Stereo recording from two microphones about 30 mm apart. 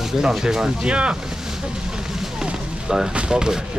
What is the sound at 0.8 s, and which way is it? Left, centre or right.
Speech, right.